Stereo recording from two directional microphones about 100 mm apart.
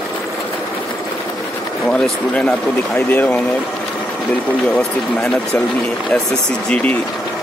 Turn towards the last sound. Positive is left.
turn(degrees=15)  # may be behind; listen again after turning